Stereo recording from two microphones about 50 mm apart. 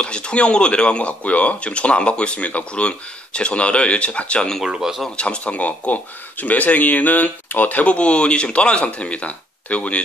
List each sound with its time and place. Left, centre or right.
0.0 s speech: left
4.6 s speech: centre
5.1 s speech: left